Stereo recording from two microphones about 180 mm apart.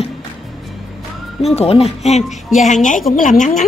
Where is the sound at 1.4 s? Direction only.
35° left (ahead or behind).